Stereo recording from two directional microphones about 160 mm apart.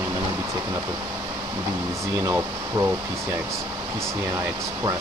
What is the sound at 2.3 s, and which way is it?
Speech, 15° right (ahead or behind).